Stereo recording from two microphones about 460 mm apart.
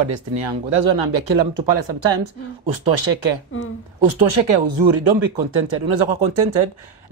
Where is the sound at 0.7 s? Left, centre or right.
Right.